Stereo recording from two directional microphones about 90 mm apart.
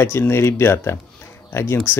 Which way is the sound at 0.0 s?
25° left (ahead or behind).